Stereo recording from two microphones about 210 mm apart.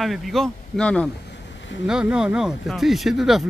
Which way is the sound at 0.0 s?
Centre (ahead or behind).